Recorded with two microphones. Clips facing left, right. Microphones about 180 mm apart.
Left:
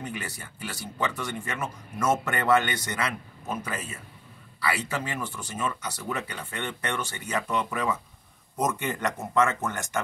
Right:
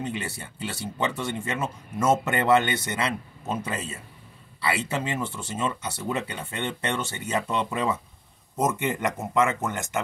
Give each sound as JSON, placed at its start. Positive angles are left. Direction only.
{"t": 0.0, "sound": "speech", "side_deg": -25}